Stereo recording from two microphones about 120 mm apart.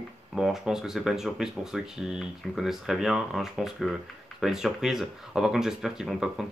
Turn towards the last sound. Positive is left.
turn(degrees=-5)  # may be behind; listen again after turning